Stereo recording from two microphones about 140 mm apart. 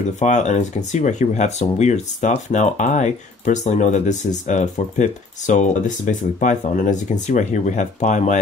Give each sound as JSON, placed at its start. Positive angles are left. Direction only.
{"t": 0.2, "sound": "speech", "side_deg": 55}